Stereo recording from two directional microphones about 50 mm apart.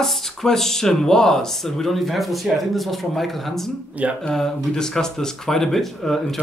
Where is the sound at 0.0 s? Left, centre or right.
Centre.